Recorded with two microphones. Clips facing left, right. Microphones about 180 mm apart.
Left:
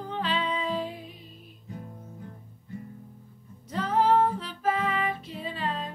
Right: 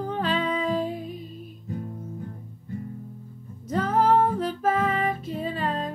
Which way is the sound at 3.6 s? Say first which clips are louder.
Right 3 dB; 45° right (ahead or behind).